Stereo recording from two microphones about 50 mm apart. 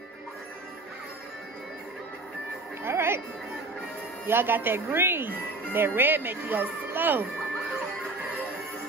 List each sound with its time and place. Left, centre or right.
2.8 s music: right
4.3 s speech: right